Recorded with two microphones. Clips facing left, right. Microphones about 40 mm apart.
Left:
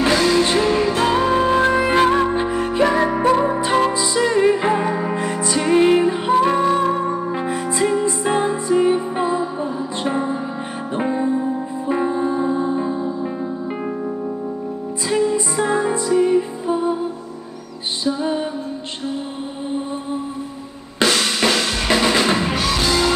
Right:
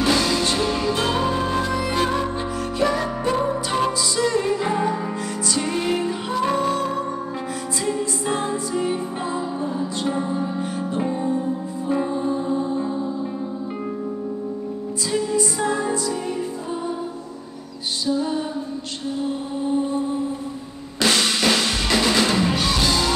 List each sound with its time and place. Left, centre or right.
0.0 s music: left
1.5 s music: left
15.0 s music: left
18.0 s music: left
21.9 s music: left